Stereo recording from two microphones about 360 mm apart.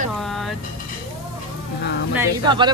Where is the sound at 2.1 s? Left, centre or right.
Centre.